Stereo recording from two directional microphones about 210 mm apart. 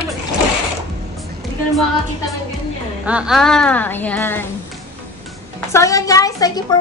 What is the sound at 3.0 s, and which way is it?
A child's voice, 5° right (ahead or behind).